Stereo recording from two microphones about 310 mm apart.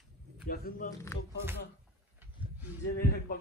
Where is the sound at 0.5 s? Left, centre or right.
Left.